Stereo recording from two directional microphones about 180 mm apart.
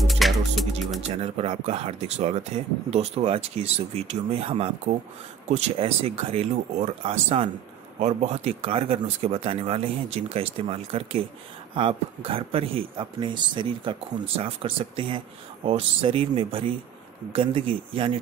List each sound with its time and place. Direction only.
0.0 s music: centre (ahead or behind)
1.0 s speech: 35° right (ahead or behind)